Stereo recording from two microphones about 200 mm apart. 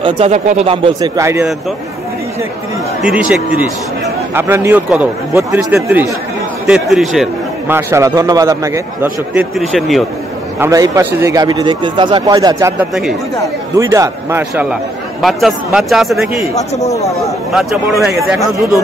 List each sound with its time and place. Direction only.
0.0 s a man's voice: 35° right (ahead or behind); by 1.5 s 15° right (ahead or behind)
3.0 s a man's voice: 5° right (ahead or behind)
4.4 s a man's voice: 10° right (ahead or behind)
10.6 s a man's voice: 15° right (ahead or behind)
15.2 s a man's voice: centre (ahead or behind)
17.5 s a man's voice: centre (ahead or behind)